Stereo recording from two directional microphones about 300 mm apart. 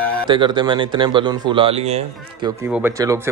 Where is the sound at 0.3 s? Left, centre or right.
Centre.